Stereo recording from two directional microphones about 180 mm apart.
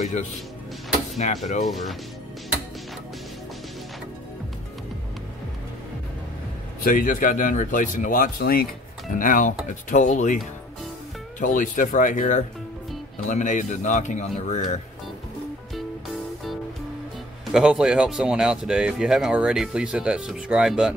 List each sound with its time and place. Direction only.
1.1 s speech: 40° left (ahead or behind)
1.6 s speech: centre (ahead or behind)
6.8 s a man's voice: 50° left (ahead or behind)
17.5 s speech: 5° right (ahead or behind)